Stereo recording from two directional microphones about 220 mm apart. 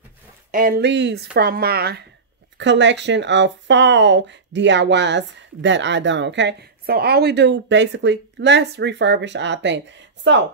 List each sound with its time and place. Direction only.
0.5 s speech: 40° right (ahead or behind); by 10.4 s 55° right (ahead or behind)